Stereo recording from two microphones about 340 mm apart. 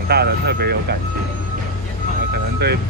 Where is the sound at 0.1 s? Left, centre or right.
Right.